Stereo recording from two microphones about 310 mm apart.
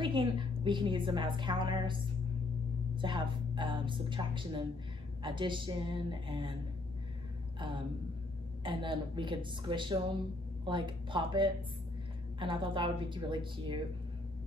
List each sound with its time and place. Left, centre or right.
0.0 s a woman's voice: centre
7.5 s a woman's voice: centre